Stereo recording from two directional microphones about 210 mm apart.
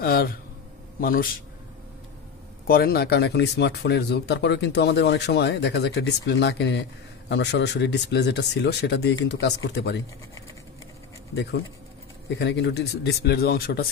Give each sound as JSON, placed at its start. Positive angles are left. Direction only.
{"t": 0.0, "sound": "a man's voice", "side_deg": 45}
{"t": 2.6, "sound": "speech", "side_deg": 45}
{"t": 12.4, "sound": "speech", "side_deg": 55}